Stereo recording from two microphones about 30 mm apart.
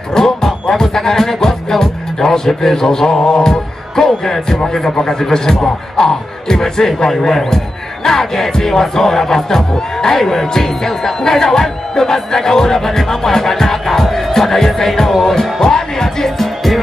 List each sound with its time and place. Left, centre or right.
0.2 s speech: centre